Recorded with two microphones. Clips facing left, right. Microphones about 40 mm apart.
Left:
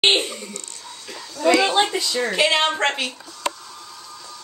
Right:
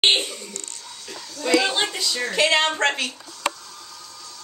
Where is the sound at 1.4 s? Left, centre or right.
Centre.